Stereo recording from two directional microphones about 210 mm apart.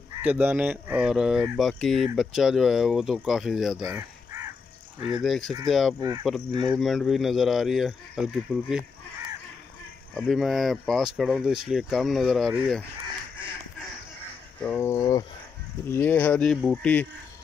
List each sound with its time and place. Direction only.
0.2 s speech: 10° right (ahead or behind)
5.2 s speech: centre (ahead or behind)
5.9 s speech: 20° right (ahead or behind)
6.8 s speech: centre (ahead or behind)
10.1 s speech: centre (ahead or behind)
14.6 s a sound: 10° left (ahead or behind)
15.9 s speech: 10° left (ahead or behind)